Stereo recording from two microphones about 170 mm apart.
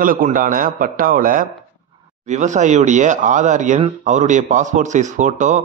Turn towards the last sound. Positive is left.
turn(degrees=-45)  # may be behind; listen again after turning